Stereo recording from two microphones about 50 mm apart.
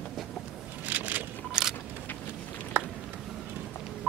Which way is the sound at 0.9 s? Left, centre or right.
Right.